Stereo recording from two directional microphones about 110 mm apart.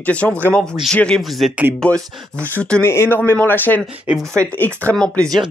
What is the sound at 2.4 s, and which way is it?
Speech, 15° left (ahead or behind).